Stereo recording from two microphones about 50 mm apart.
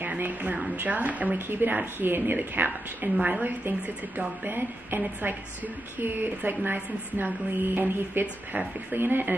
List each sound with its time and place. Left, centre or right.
0.2 s a woman's voice: right